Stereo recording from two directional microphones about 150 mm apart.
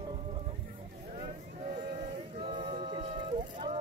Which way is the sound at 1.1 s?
45° right (ahead or behind).